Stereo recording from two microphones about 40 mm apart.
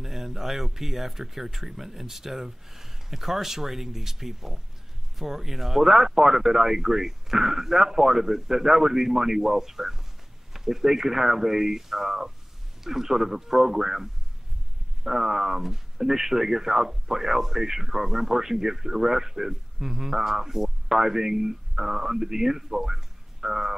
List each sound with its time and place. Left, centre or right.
0.0 s speech: centre